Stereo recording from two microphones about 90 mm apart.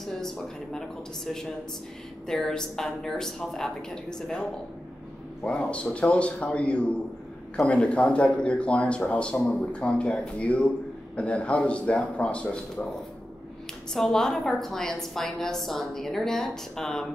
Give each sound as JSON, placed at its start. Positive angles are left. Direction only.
{"t": 0.0, "sound": "a woman's voice", "side_deg": 5}
{"t": 13.9, "sound": "a woman's voice", "side_deg": 5}